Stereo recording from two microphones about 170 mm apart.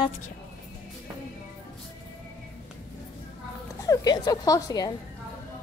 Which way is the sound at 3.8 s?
25° left (ahead or behind).